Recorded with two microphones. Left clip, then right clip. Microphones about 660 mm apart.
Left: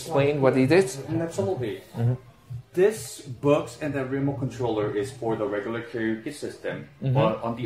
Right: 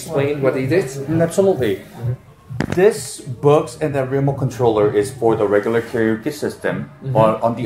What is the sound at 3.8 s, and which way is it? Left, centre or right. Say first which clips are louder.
Speech: right 9 dB; centre.